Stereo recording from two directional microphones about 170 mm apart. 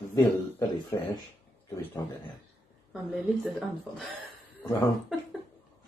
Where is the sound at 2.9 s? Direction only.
Centre (ahead or behind).